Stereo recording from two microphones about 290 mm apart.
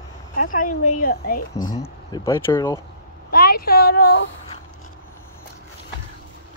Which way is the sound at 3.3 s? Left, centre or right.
Left.